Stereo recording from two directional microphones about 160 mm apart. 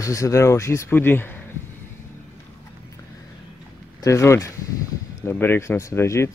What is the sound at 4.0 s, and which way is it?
Speech, 20° left (ahead or behind).